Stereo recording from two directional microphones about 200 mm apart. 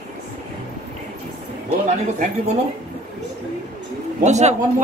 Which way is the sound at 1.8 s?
40° right (ahead or behind).